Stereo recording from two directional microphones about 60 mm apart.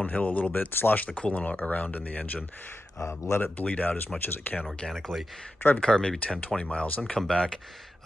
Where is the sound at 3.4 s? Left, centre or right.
Left.